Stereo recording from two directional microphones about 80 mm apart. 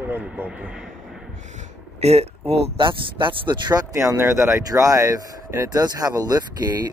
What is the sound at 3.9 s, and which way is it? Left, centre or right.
Speech, right.